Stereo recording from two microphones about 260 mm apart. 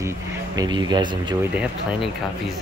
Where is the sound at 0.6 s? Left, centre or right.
Centre.